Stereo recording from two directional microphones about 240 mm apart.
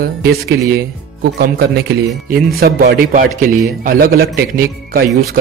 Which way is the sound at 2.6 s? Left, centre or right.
Right.